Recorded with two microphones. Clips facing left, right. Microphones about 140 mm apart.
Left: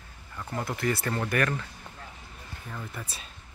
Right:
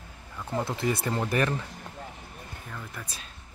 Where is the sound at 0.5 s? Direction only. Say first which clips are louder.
Right 1 dB; 20° right (ahead or behind).